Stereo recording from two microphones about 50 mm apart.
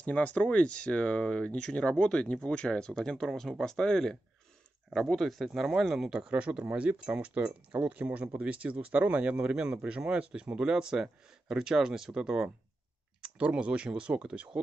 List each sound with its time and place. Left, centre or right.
0.0 s speech: left
3.3 s speech: centre
13.5 s speech: right